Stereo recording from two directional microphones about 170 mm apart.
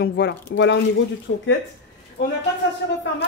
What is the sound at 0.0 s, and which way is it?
Speech, 80° left.